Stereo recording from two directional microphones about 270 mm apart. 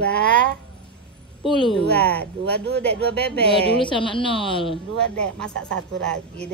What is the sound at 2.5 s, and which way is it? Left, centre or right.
Speech, right.